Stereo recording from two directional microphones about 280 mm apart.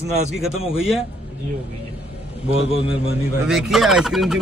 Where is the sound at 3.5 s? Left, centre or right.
Centre.